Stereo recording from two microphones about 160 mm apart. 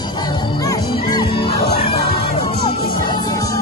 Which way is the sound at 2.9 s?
25° left (ahead or behind).